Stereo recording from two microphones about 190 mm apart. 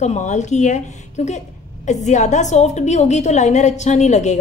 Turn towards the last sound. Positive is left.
turn(degrees=35)  # may be behind; listen again after turning